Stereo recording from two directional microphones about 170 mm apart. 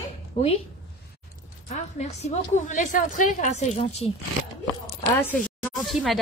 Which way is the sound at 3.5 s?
40° left (ahead or behind).